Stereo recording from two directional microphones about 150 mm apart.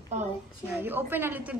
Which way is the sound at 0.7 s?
15° right (ahead or behind).